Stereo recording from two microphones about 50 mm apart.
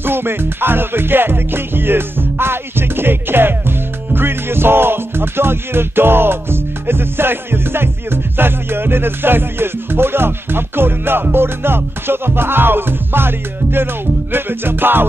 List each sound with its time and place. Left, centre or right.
0.0 s music: right